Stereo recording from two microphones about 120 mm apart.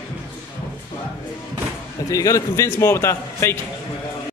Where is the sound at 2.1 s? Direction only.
30° left (ahead or behind).